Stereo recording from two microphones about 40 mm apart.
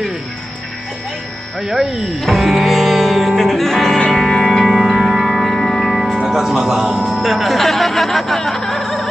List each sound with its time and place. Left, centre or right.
1.6 s speech: centre
2.1 s music: centre
5.6 s music: centre
6.1 s speech: centre
7.2 s speech: centre